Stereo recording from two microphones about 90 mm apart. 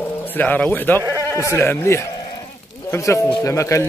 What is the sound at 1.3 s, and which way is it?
Speech, 30° left (ahead or behind).